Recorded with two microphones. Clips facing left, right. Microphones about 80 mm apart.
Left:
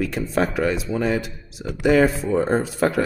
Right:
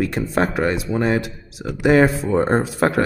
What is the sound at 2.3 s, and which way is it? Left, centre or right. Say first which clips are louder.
Speech: right 2 dB; right.